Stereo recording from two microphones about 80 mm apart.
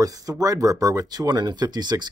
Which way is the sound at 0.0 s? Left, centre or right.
Right.